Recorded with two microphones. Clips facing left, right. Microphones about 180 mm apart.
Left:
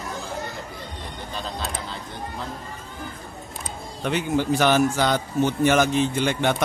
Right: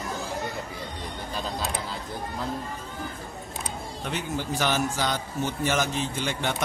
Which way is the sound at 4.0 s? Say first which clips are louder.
Left 9 dB; 65° left (ahead or behind).